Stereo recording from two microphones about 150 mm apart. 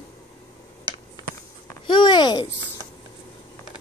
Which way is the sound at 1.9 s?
30° left (ahead or behind).